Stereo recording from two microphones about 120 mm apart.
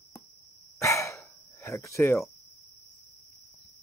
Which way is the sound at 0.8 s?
25° left (ahead or behind).